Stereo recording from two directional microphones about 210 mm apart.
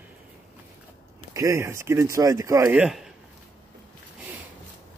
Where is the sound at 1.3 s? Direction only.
15° right (ahead or behind).